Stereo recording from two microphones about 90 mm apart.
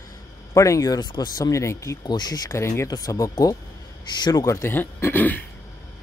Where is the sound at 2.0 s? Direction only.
50° left (ahead or behind).